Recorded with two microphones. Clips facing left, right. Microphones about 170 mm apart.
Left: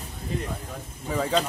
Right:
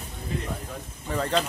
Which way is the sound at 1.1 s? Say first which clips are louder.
Left 1 dB; 5° left (ahead or behind).